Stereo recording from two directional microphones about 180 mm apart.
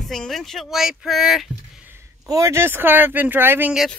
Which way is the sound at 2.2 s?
20° right (ahead or behind).